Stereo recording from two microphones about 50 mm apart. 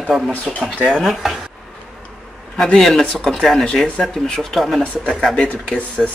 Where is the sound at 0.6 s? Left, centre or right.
Centre.